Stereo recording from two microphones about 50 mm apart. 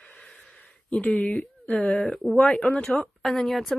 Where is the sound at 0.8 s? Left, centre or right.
Left.